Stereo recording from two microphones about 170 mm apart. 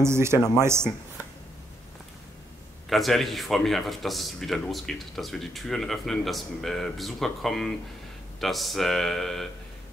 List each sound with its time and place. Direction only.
0.0 s speech: 15° right (ahead or behind)
2.9 s speech: centre (ahead or behind)